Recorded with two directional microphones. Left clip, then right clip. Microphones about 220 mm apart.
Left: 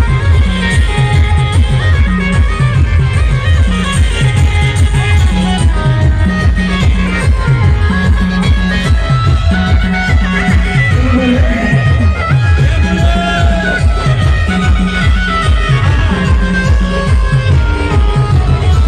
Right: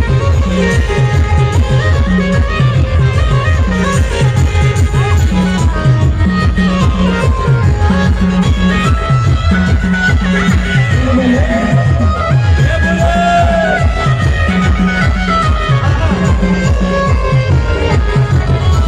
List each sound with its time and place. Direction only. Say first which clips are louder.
0.6 s music: right 2 dB; 35° right (ahead or behind)
3.8 s music: right 2 dB; 35° right (ahead or behind)
5.3 s music: even; 35° right (ahead or behind)
10.2 s music: even; 40° right (ahead or behind)
12.8 s music: right 4 dB; 35° right (ahead or behind)